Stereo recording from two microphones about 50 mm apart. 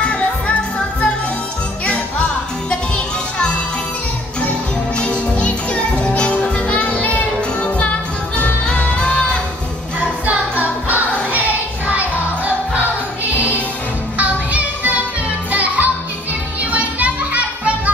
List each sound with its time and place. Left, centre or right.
0.0 s music: left
4.4 s music: left
9.9 s music: right
14.1 s music: right